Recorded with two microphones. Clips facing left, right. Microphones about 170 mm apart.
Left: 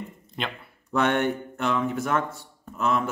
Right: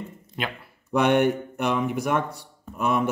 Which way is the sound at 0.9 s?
15° right (ahead or behind).